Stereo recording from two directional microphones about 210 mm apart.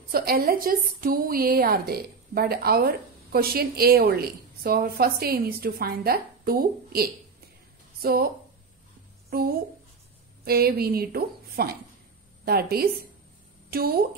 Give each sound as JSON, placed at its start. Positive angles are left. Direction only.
{"t": 0.1, "sound": "a woman's voice", "side_deg": -45}
{"t": 9.3, "sound": "a woman's voice", "side_deg": -45}